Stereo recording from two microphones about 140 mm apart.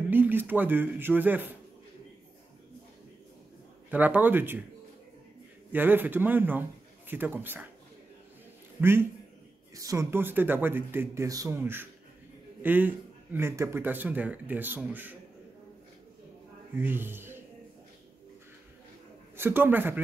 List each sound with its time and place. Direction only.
0.1 s speech: 15° right (ahead or behind)
3.9 s speech: 10° right (ahead or behind)
5.7 s speech: 15° right (ahead or behind)
9.8 s speech: 20° right (ahead or behind)
16.7 s speech: 15° right (ahead or behind)
19.3 s speech: 15° right (ahead or behind)